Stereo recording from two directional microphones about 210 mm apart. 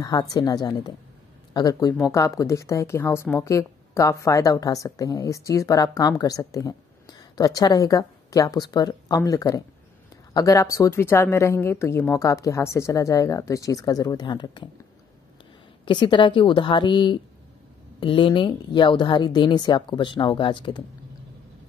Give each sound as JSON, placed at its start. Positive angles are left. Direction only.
{"t": 0.0, "sound": "a woman's voice", "side_deg": 20}
{"t": 15.8, "sound": "a woman's voice", "side_deg": 20}